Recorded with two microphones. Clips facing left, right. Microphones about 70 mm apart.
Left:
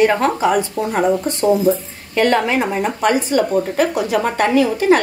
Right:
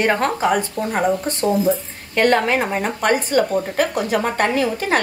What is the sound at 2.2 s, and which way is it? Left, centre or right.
A woman's voice, right.